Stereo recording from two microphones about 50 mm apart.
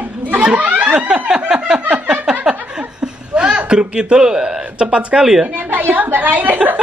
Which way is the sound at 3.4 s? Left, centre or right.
Centre.